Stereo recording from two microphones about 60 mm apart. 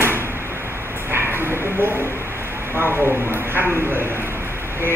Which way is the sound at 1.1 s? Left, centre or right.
Right.